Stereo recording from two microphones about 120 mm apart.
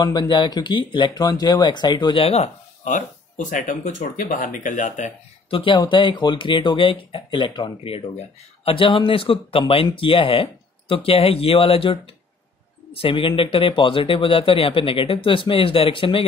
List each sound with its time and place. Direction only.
0.0 s speech: 40° left (ahead or behind)
2.2 s speech: 60° left (ahead or behind); by 3.0 s 75° left (ahead or behind)
3.4 s speech: 90° left
5.5 s speech: 45° left (ahead or behind)